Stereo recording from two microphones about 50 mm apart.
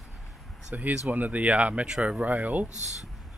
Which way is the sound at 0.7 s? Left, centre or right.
Right.